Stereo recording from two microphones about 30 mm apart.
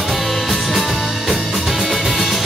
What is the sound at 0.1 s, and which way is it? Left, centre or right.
Music, centre.